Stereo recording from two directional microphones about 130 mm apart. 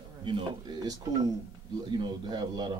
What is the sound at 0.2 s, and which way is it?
Speech, 35° right (ahead or behind).